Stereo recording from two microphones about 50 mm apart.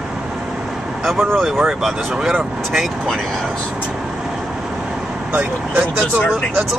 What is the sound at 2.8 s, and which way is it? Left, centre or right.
Speech, centre.